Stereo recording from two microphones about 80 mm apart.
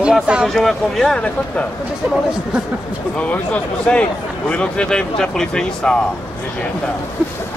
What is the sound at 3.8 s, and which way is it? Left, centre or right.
A man's voice, centre.